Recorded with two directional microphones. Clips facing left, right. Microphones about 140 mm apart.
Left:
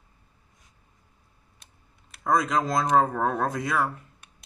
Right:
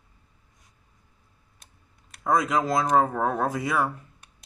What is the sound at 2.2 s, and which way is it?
Speech, 5° right (ahead or behind).